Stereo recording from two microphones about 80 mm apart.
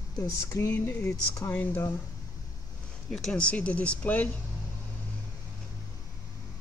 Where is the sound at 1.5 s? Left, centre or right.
Left.